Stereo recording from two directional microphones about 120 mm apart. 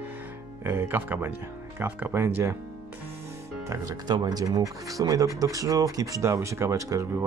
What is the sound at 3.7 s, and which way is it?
Speech, 35° right (ahead or behind).